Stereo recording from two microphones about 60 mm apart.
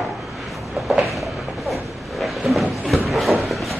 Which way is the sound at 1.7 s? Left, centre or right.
Centre.